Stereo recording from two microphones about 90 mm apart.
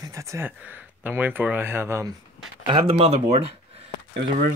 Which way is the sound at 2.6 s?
85° right.